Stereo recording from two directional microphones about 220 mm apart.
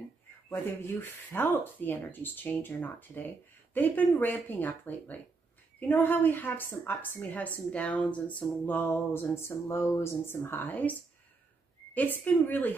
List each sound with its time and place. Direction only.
0.5 s a woman's voice: 10° left (ahead or behind)